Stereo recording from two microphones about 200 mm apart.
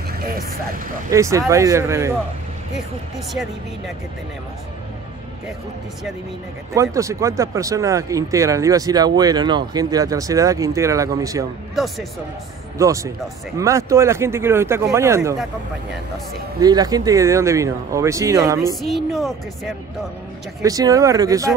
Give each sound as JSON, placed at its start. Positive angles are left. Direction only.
{"t": 0.2, "sound": "vehicle", "side_deg": -50}
{"t": 1.1, "sound": "speech", "side_deg": -15}
{"t": 6.7, "sound": "speech", "side_deg": -15}
{"t": 11.7, "sound": "speech", "side_deg": 0}
{"t": 12.7, "sound": "speech", "side_deg": -15}
{"t": 16.6, "sound": "speech", "side_deg": -20}
{"t": 18.8, "sound": "speech", "side_deg": 0}
{"t": 20.6, "sound": "speech", "side_deg": -15}